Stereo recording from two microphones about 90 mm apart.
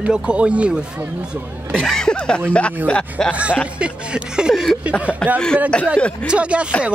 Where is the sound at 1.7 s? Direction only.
5° left (ahead or behind).